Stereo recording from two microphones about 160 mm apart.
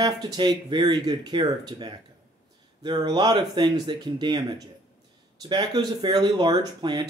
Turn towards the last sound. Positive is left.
turn(degrees=-25)  # may be behind; listen again after turning